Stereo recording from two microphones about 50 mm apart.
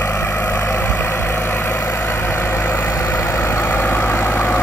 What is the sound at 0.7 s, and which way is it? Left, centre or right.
Vehicle, left.